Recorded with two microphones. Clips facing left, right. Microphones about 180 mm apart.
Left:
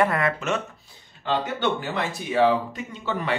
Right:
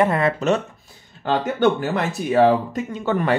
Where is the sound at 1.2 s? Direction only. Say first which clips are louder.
Right 6 dB; 45° right (ahead or behind).